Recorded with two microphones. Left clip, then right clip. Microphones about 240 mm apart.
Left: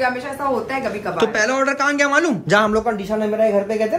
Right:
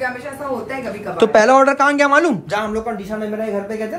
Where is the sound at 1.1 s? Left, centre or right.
Centre.